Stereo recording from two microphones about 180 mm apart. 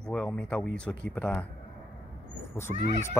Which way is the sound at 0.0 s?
5° left (ahead or behind).